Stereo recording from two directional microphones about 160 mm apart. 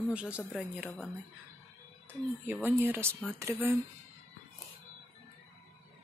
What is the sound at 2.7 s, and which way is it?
Speech, 15° right (ahead or behind).